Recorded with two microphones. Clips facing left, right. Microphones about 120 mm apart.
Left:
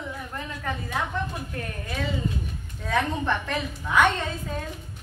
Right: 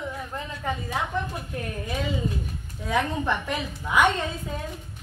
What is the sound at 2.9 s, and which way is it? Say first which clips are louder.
Speech: even; 15° right (ahead or behind).